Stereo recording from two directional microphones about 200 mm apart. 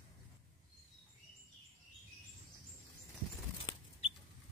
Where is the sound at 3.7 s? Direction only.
20° left (ahead or behind).